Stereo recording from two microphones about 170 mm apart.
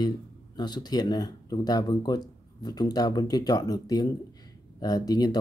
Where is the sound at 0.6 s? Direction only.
25° left (ahead or behind).